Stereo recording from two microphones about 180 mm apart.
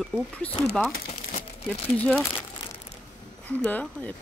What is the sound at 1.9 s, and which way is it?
Speech, 5° left (ahead or behind).